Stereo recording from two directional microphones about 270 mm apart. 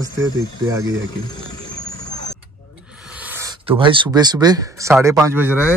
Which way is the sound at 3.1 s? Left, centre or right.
Centre.